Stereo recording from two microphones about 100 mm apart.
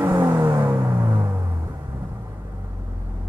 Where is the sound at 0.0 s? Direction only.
25° right (ahead or behind).